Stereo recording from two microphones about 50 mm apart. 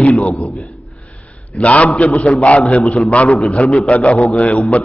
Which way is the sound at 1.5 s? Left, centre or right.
Left.